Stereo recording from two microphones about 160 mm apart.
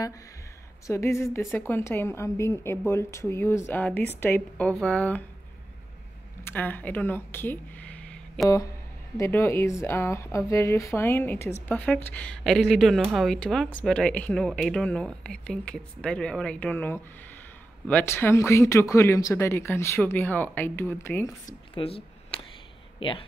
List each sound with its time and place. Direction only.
0.8 s speech: 15° left (ahead or behind)
6.4 s speech: 10° left (ahead or behind)
9.1 s speech: 15° left (ahead or behind)
21.7 s a sound: 35° left (ahead or behind)
22.9 s speech: 35° left (ahead or behind)